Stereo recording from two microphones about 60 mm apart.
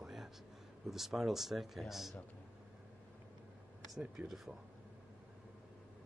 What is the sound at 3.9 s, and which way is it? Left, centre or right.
Speech, centre.